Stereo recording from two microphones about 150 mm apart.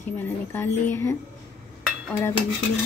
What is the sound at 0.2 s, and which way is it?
Speech, 15° left (ahead or behind).